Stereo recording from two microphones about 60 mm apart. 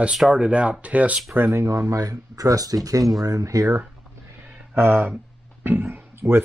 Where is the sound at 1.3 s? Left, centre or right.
Right.